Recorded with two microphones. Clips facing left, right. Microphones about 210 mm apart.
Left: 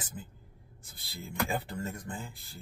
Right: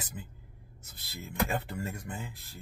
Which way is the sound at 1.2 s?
5° right (ahead or behind).